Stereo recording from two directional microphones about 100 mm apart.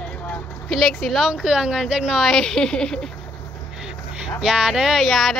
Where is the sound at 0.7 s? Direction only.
Centre (ahead or behind).